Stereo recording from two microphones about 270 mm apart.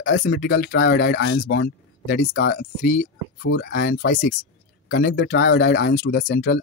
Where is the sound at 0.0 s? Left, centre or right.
Left.